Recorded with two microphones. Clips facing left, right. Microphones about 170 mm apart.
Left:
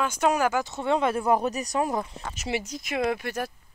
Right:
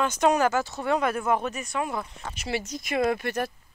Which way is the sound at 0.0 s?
5° left (ahead or behind).